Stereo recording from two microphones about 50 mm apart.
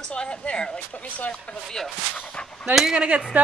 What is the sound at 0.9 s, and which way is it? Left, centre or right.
Speech, left.